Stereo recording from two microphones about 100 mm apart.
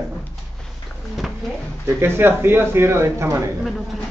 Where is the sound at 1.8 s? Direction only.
25° right (ahead or behind).